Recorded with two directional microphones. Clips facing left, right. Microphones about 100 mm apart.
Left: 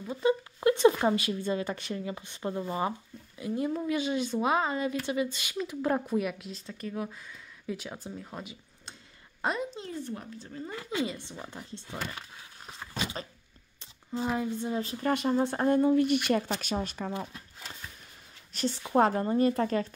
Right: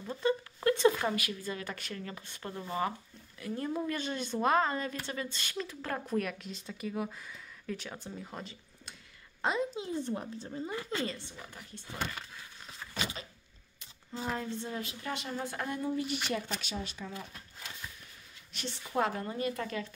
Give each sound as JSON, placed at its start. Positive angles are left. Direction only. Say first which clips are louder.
{"t": 0.0, "sound": "speech", "louder": "left 4 dB", "side_deg": 10}
{"t": 6.0, "sound": "a woman's voice", "louder": "left 3 dB", "side_deg": 5}
{"t": 10.0, "sound": "a woman's voice", "louder": "right 2 dB", "side_deg": -25}
{"t": 10.9, "sound": "speech", "louder": "left 3 dB", "side_deg": 10}
{"t": 11.3, "sound": "speech", "louder": "left 6 dB", "side_deg": 25}
{"t": 12.7, "sound": "a sound", "louder": "left 3 dB", "side_deg": 30}
{"t": 14.2, "sound": "speech", "louder": "left 5 dB", "side_deg": 10}
{"t": 15.0, "sound": "speech", "louder": "left 12 dB", "side_deg": 50}
{"t": 15.3, "sound": "speech", "louder": "left 11 dB", "side_deg": 30}
{"t": 15.8, "sound": "speech", "louder": "left 10 dB", "side_deg": 60}
{"t": 18.5, "sound": "a woman's voice", "louder": "left 9 dB", "side_deg": 40}